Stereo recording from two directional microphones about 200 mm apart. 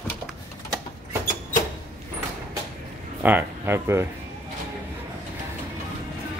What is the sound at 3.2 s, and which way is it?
Speech, 10° right (ahead or behind).